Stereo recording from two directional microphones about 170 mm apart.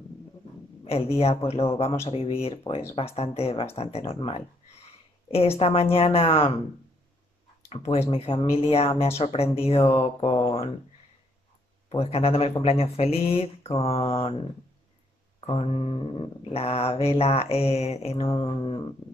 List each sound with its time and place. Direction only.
0.8 s mantra: 35° left (ahead or behind)
7.7 s mantra: 35° left (ahead or behind)
11.9 s mantra: 35° left (ahead or behind)
15.4 s mantra: 35° left (ahead or behind)
18.4 s a sound: 30° left (ahead or behind)